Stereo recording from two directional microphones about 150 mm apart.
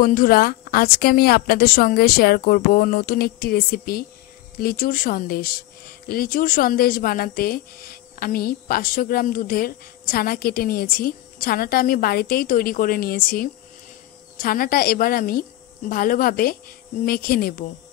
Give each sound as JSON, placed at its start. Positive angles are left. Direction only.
{"t": 0.0, "sound": "a woman's voice", "side_deg": 70}
{"t": 4.6, "sound": "a woman's voice", "side_deg": 75}